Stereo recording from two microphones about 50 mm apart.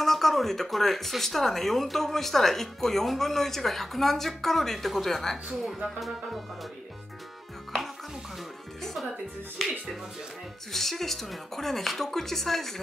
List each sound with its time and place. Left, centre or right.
0.0 s speech: centre
9.6 s speech: centre